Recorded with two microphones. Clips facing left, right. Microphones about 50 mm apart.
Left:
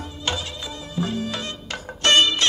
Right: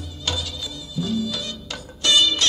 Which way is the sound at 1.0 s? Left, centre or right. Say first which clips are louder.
Right 1 dB; left.